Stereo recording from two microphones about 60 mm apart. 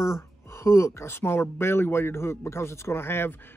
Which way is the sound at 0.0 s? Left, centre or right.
Left.